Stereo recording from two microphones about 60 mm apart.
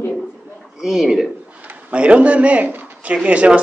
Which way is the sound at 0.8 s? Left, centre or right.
Centre.